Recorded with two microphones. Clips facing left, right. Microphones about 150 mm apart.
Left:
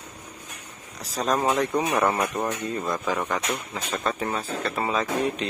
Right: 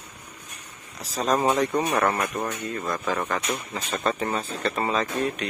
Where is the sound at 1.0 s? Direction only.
Centre (ahead or behind).